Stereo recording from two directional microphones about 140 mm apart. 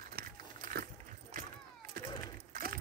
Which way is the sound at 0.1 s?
80° right.